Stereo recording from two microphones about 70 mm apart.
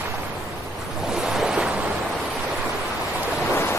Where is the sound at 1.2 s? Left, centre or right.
Centre.